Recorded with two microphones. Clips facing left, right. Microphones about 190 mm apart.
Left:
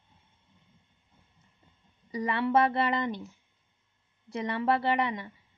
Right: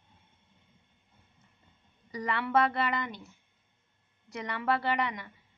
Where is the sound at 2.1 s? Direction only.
25° left (ahead or behind).